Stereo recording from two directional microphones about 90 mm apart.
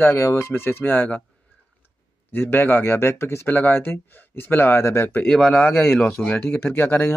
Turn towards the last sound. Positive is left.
turn(degrees=25)  # may be behind; listen again after turning